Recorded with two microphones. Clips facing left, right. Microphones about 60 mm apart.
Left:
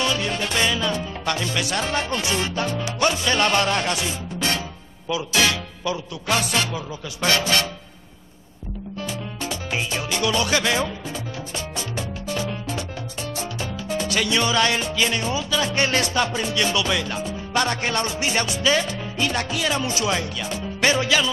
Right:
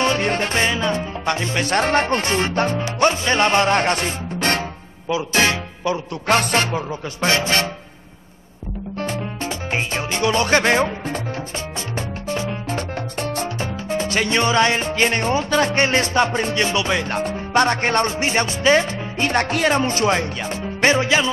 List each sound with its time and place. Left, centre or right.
0.0 s music: right
1.7 s speech: right
5.1 s speech: right
6.3 s music: right
7.2 s speech: right
9.0 s music: right
12.3 s music: right
12.6 s music: right
13.8 s speech: right
17.1 s music: right
17.6 s speech: right